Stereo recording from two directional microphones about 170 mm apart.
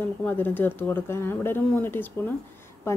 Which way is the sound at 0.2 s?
10° left (ahead or behind).